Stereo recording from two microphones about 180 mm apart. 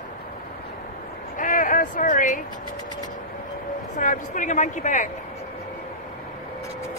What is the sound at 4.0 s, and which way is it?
Speech, 45° left (ahead or behind).